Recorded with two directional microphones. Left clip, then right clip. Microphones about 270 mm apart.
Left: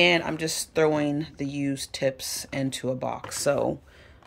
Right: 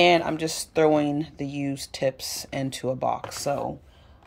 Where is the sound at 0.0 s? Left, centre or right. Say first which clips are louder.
Right 2 dB; centre.